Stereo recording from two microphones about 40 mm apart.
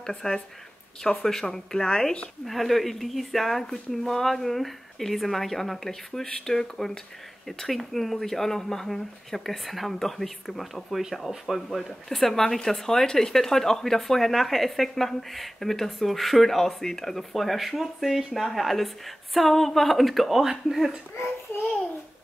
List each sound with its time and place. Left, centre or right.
0.0 s speech: centre
12.1 s speech: centre